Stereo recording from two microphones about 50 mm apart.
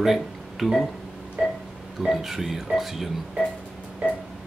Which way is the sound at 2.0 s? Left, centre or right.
Centre.